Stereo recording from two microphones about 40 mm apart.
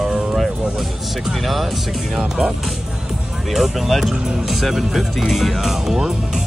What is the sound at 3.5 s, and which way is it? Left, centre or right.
Speech, centre.